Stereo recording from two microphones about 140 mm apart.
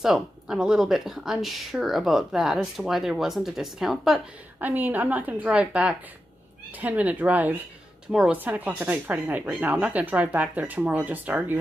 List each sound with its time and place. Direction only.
0.0 s speech: 5° right (ahead or behind)
4.6 s speech: 10° right (ahead or behind)